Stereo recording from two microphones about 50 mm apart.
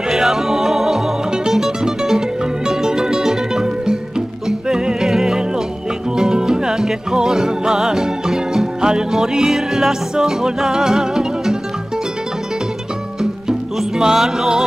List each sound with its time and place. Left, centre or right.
0.1 s music: centre
13.2 s music: centre